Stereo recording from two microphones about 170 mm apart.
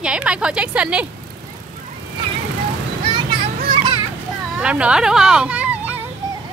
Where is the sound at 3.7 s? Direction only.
30° right (ahead or behind).